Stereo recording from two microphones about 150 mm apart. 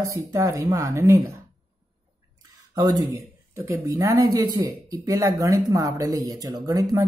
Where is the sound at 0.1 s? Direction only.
20° right (ahead or behind).